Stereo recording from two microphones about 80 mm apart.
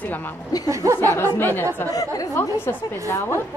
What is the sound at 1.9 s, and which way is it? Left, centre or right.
Speech, left.